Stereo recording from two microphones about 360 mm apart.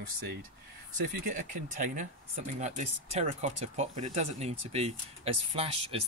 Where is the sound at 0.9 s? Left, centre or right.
Right.